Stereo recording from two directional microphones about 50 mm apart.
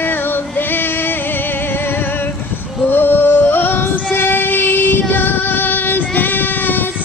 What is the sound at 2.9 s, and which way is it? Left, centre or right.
Female singing, left.